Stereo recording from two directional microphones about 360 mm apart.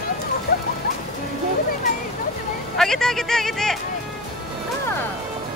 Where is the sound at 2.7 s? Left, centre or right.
Centre.